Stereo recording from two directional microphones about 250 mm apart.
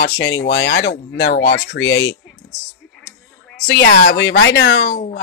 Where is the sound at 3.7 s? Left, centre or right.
Left.